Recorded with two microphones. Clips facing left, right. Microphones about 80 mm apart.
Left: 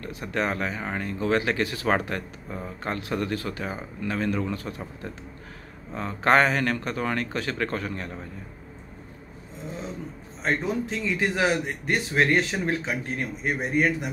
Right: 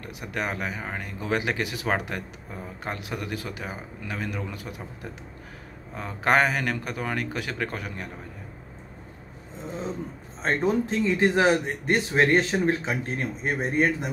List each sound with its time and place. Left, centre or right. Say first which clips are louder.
0.0 s speech: left 3 dB; centre
10.4 s a man's voice: right 2 dB; right